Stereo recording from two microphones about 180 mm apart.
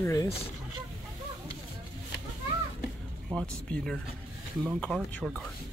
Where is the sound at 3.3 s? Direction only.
5° left (ahead or behind).